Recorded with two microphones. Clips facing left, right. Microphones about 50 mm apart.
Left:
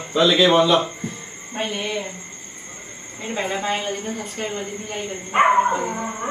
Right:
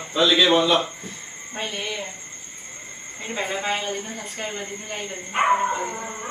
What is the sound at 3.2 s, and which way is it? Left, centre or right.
A man's voice, centre.